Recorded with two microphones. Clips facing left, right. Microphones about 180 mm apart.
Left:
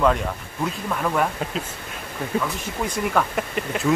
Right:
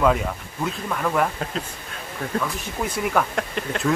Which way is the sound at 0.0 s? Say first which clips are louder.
Even; 5° right (ahead or behind).